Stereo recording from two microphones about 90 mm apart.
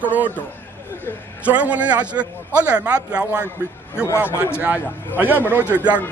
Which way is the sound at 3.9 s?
25° left (ahead or behind).